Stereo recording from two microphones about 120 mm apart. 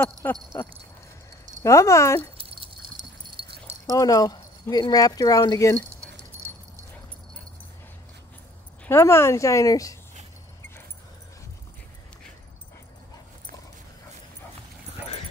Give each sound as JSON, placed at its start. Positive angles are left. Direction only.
{"t": 0.0, "sound": "a sound", "side_deg": 15}
{"t": 1.6, "sound": "a woman's voice", "side_deg": 25}
{"t": 2.3, "sound": "dog", "side_deg": -45}
{"t": 3.8, "sound": "speech", "side_deg": 30}
{"t": 8.8, "sound": "a woman's voice", "side_deg": 20}